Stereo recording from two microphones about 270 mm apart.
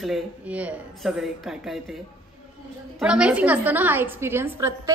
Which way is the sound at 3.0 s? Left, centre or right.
Centre.